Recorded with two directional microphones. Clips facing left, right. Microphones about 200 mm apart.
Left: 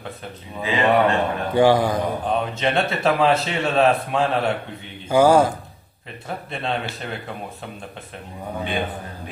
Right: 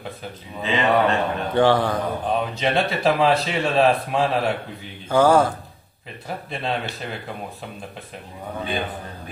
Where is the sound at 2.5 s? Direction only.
Centre (ahead or behind).